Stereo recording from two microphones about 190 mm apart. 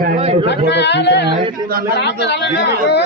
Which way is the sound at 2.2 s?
65° left (ahead or behind).